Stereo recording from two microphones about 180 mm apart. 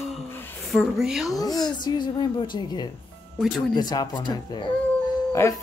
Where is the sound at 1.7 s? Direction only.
25° left (ahead or behind).